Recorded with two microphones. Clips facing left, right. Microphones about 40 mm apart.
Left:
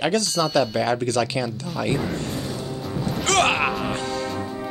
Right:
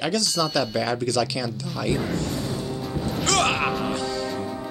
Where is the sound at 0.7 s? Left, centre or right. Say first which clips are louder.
Left 3 dB; left.